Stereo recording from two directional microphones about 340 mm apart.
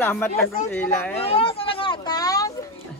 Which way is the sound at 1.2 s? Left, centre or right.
Centre.